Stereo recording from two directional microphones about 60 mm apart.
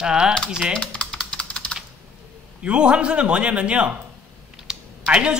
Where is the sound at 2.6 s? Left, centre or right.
Centre.